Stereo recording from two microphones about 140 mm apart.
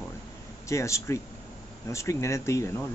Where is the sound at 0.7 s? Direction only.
20° left (ahead or behind).